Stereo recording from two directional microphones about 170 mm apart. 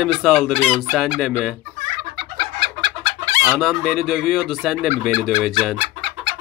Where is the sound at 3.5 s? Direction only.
Centre (ahead or behind).